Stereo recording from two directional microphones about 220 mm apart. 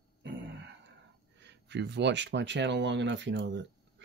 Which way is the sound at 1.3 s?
50° right (ahead or behind).